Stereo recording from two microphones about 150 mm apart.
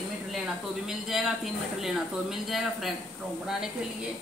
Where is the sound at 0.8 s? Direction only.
Centre (ahead or behind).